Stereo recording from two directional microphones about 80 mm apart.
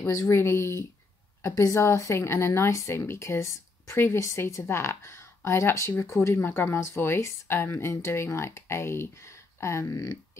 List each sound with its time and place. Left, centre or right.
0.0 s speech: left
0.4 s speech: left